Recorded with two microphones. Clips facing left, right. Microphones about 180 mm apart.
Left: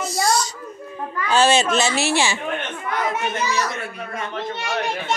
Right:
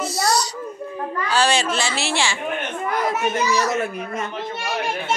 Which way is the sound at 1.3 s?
20° left (ahead or behind).